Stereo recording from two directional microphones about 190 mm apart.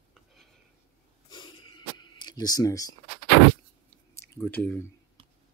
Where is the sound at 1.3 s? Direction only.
25° left (ahead or behind).